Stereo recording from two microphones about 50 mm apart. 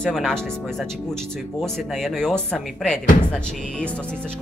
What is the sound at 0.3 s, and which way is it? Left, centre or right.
Speech, centre.